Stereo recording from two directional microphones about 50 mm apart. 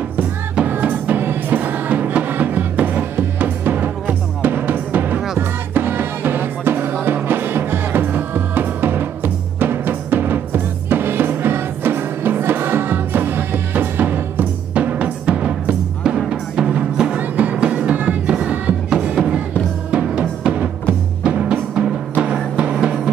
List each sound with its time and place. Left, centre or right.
0.7 s music: right
14.7 s timpani: right
16.3 s music: centre
18.9 s music: centre